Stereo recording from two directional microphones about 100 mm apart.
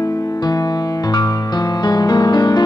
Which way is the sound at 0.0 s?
35° left (ahead or behind).